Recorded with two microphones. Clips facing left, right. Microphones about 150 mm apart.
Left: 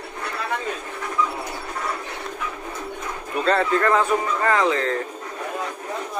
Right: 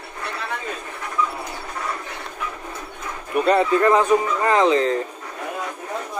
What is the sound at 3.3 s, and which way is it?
Speech, 15° right (ahead or behind).